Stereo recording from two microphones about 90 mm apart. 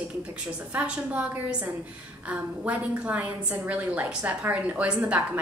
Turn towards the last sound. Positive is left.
turn(degrees=-15)  # may be behind; listen again after turning